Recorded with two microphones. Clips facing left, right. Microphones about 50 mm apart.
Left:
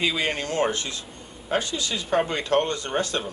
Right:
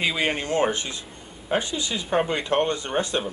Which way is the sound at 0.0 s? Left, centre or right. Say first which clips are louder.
Right 1 dB; centre.